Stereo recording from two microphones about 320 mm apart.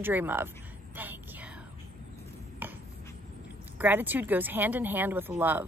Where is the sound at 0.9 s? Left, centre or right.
Centre.